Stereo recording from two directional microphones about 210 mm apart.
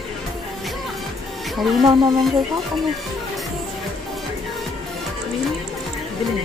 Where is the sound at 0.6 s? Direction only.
Centre (ahead or behind).